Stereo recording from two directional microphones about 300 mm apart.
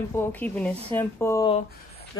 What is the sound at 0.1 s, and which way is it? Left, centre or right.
Speech, centre.